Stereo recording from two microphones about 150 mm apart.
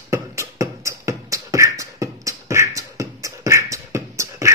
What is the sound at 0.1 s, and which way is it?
Beatboxing, 20° right (ahead or behind).